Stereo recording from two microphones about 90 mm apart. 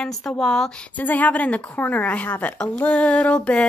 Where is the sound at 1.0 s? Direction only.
20° left (ahead or behind).